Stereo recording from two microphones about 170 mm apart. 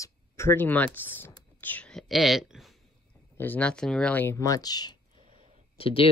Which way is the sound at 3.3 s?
10° left (ahead or behind).